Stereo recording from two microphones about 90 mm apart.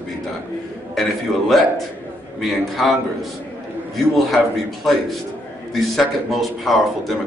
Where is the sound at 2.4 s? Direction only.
Centre (ahead or behind).